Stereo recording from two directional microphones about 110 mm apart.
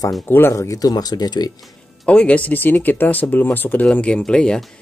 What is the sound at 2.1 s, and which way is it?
Speech, 10° left (ahead or behind).